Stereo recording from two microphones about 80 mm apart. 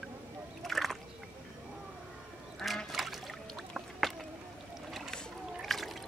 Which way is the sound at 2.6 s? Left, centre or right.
Centre.